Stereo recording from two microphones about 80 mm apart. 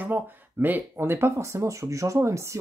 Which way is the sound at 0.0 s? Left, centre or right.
Right.